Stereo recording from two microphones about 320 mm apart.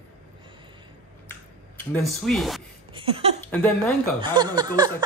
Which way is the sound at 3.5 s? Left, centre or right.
Centre.